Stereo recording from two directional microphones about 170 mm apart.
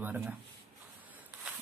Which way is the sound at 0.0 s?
10° right (ahead or behind).